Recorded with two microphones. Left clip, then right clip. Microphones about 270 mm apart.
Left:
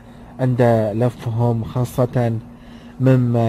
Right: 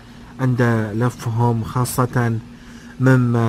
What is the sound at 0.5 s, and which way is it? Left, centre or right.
Speech, left.